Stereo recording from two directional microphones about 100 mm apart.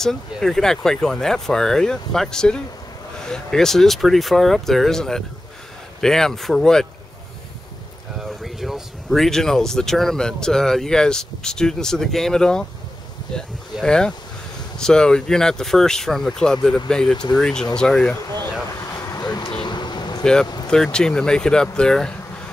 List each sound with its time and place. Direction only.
0.0 s speech: 5° left (ahead or behind)
8.2 s speech: centre (ahead or behind)
18.1 s a sound: 30° left (ahead or behind)
20.7 s speech: 5° left (ahead or behind)